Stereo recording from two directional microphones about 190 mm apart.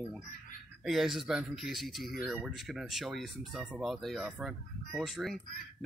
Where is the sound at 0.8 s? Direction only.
Centre (ahead or behind).